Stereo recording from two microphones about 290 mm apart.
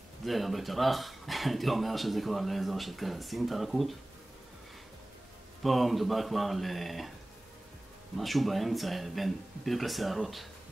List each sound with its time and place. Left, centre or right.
0.2 s speech: centre
5.6 s speech: centre
8.2 s speech: centre